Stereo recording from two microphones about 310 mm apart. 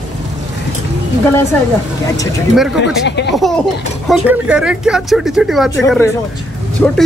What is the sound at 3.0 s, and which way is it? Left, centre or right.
Speech, left.